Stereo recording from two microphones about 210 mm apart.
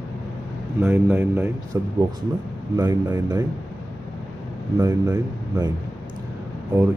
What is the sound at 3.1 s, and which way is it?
Speech, 15° right (ahead or behind).